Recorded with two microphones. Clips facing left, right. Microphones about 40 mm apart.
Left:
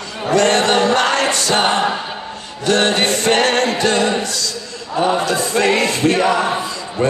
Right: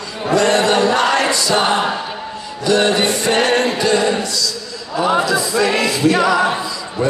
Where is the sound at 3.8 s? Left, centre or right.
Left.